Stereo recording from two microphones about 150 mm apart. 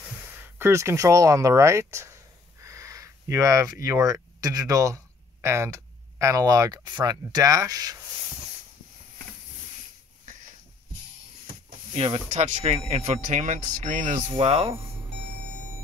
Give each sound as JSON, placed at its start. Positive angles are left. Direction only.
{"t": 0.2, "sound": "speech", "side_deg": -15}
{"t": 11.9, "sound": "speech", "side_deg": -45}
{"t": 14.3, "sound": "speech", "side_deg": -40}